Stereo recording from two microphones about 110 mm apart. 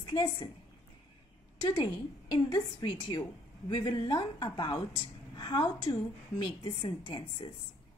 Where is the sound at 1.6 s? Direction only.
45° left (ahead or behind).